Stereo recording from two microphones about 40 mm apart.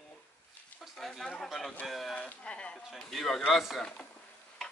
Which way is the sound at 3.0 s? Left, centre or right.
Centre.